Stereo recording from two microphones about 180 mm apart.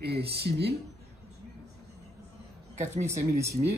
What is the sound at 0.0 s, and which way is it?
Speech, 65° right (ahead or behind).